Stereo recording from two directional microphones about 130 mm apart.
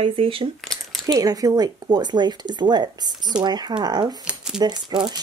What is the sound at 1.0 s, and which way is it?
Speech, 30° right (ahead or behind).